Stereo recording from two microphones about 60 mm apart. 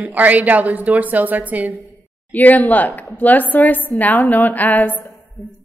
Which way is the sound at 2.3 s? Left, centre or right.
Left.